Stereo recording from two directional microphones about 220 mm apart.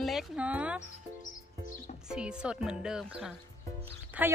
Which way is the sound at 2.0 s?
5° right (ahead or behind).